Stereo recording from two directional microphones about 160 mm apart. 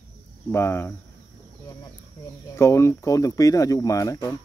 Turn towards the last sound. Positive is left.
turn(degrees=20)  # may be behind; listen again after turning